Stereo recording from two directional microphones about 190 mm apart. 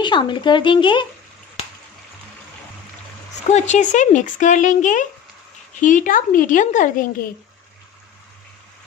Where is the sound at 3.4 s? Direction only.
35° left (ahead or behind).